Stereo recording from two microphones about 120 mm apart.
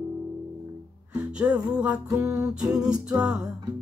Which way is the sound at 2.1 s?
30° right (ahead or behind).